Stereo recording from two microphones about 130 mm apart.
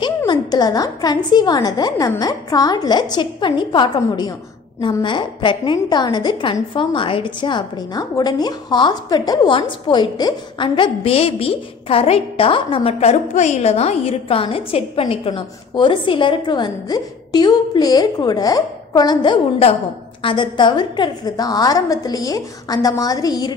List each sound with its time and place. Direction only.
0.3 s a woman's voice: 30° left (ahead or behind)
13.1 s a woman's voice: 65° left (ahead or behind); by 23.5 s 30° left (ahead or behind)